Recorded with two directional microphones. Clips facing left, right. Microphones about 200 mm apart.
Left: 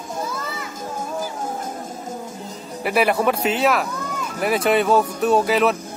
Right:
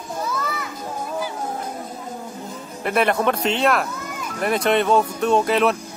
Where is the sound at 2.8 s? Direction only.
5° left (ahead or behind).